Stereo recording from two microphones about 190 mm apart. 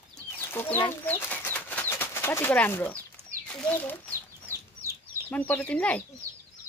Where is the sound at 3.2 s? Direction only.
30° right (ahead or behind).